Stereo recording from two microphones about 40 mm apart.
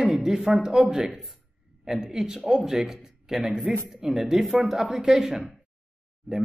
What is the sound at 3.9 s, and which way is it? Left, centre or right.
Speech, centre.